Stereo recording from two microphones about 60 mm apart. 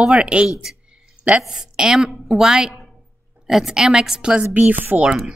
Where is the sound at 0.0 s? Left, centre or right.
Centre.